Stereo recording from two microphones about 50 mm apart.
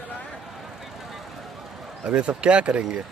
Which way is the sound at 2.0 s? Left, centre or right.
Right.